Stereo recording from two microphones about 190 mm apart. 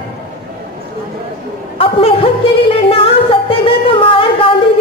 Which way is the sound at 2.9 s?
30° left (ahead or behind).